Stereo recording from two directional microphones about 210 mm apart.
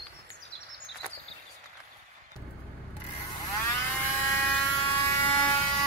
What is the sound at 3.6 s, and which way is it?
Vehicle, 10° left (ahead or behind).